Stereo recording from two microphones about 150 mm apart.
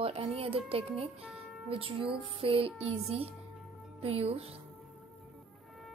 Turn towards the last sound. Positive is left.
turn(degrees=-40)  # may be behind; listen again after turning